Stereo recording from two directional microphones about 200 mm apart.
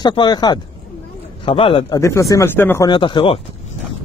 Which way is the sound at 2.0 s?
15° left (ahead or behind).